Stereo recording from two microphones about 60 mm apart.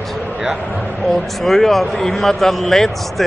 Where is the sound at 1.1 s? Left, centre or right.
Centre.